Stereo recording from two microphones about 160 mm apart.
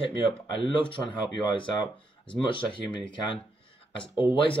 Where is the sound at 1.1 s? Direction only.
30° left (ahead or behind).